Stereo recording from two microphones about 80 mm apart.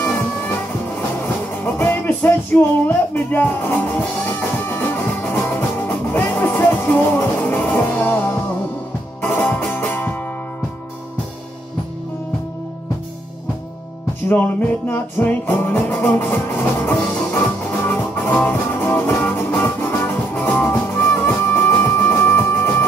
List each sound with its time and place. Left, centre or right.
1.2 s music: left
14.3 s music: left